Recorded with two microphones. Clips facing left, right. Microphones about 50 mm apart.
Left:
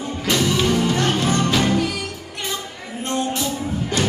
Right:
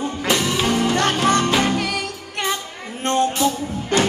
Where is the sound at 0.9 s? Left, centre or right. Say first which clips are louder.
Right 2 dB; right.